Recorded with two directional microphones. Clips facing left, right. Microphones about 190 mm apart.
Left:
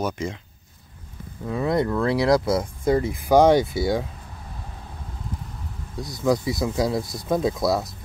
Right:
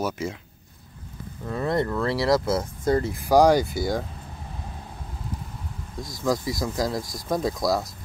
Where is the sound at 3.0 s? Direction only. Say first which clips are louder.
Left 1 dB; 20° left (ahead or behind).